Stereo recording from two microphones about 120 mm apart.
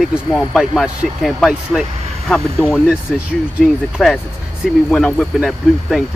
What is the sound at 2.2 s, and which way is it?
Speech, 5° left (ahead or behind).